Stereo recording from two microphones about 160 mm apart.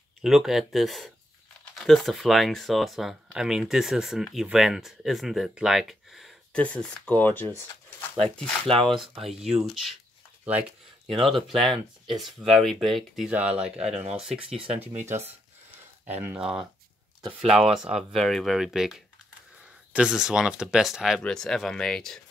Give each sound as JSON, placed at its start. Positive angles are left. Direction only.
{"t": 0.2, "sound": "speech", "side_deg": 0}
{"t": 11.2, "sound": "speech", "side_deg": 0}
{"t": 15.0, "sound": "speech", "side_deg": -15}